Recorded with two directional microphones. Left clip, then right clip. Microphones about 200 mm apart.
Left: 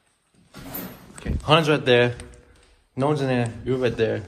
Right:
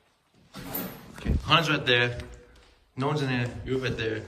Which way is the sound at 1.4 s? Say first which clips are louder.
Left 5 dB; 5° right (ahead or behind).